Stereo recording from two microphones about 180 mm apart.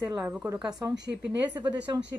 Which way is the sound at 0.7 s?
20° right (ahead or behind).